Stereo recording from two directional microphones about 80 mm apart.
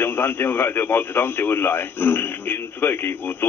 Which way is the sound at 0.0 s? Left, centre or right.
Left.